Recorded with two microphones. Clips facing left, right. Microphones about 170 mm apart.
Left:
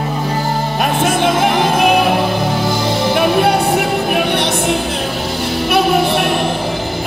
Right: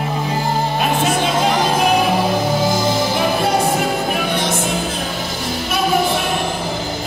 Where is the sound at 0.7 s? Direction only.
50° left (ahead or behind); by 6.4 s 65° left (ahead or behind).